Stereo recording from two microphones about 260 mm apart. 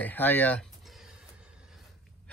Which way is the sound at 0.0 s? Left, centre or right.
Centre.